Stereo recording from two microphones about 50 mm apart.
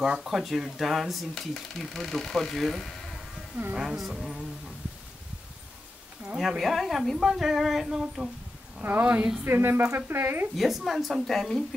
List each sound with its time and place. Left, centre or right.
0.0 s speech: centre
3.7 s speech: centre
6.3 s speech: centre
9.0 s speech: right
9.4 s a woman's voice: right
10.5 s speech: centre